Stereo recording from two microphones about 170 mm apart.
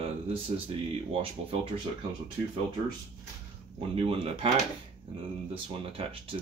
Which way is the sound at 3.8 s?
35° right (ahead or behind).